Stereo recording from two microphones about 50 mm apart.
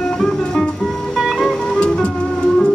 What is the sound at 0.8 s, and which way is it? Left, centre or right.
Music, centre.